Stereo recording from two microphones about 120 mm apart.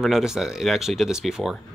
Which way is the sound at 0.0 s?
5° right (ahead or behind).